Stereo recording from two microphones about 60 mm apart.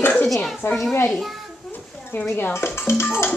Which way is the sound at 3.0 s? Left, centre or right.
Left.